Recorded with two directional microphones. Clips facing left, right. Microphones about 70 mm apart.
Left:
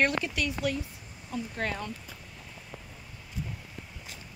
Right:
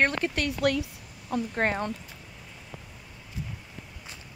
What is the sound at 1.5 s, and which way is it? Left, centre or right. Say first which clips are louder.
Speech: right 6 dB; right.